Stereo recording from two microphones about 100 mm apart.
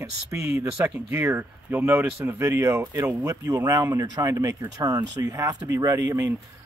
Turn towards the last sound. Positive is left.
turn(degrees=-30)  # may be behind; listen again after turning